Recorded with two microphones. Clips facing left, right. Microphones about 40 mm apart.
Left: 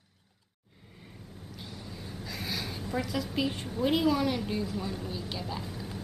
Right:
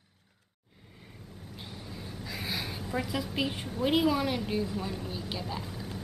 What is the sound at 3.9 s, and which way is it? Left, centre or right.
Speech, centre.